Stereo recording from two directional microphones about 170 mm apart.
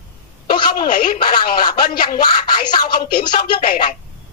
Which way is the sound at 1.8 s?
60° left (ahead or behind).